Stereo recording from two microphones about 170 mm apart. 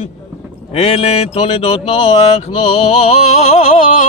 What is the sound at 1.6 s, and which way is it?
Music, 35° left (ahead or behind).